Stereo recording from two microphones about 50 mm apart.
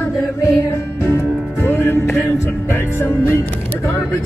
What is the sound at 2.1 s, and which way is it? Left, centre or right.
Music, left.